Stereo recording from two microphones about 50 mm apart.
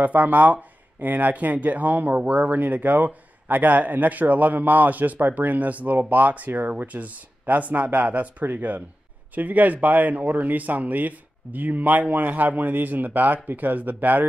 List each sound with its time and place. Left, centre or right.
0.0 s speech: right